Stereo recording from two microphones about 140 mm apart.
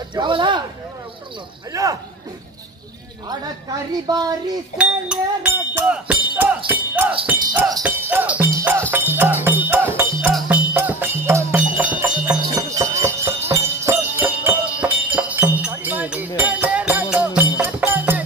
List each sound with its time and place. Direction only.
0.1 s speech: 35° right (ahead or behind)
1.7 s a woman's voice: 25° right (ahead or behind)
3.3 s a woman's voice: 30° right (ahead or behind)
4.7 s music: 5° right (ahead or behind)
7.8 s a sound: 10° right (ahead or behind)
8.9 s music: 15° right (ahead or behind)
12.5 s jingle bell: 20° right (ahead or behind)
16.3 s music: 10° right (ahead or behind)